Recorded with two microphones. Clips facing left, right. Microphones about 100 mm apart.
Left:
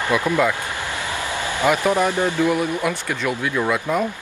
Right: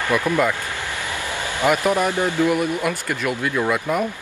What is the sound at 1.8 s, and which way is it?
Speech, 20° left (ahead or behind).